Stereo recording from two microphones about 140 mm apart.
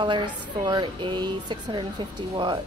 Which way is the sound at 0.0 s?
35° right (ahead or behind).